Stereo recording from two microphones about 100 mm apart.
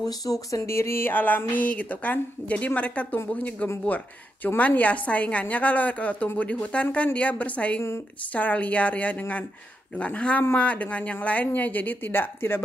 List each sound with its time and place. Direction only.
0.0 s a woman's voice: 35° left (ahead or behind)